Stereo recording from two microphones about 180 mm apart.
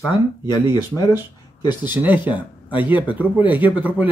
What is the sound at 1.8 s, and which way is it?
Speech, 10° right (ahead or behind).